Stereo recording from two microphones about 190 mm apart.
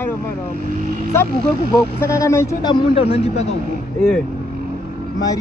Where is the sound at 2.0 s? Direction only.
15° left (ahead or behind); by 3.5 s 35° left (ahead or behind).